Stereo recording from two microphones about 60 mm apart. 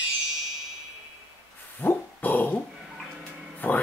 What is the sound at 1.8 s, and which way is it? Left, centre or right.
Dog, left.